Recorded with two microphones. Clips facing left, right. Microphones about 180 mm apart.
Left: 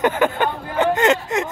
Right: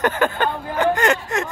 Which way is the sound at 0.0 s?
15° left (ahead or behind).